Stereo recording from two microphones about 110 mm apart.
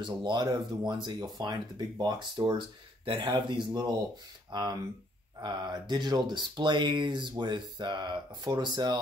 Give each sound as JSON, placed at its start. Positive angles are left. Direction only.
{"t": 0.0, "sound": "speech", "side_deg": -45}